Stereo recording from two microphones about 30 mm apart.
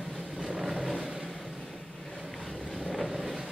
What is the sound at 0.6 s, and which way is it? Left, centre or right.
Vehicle, centre.